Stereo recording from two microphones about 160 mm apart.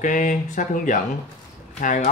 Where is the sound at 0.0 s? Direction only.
55° left (ahead or behind).